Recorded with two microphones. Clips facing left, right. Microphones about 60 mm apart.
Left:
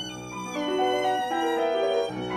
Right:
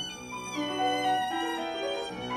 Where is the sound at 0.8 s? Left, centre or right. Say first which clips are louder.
Left 3 dB; centre.